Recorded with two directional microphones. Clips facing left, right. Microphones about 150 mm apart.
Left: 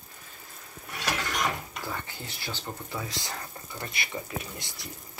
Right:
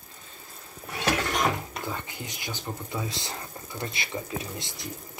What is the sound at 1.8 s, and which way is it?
Speech, 15° right (ahead or behind).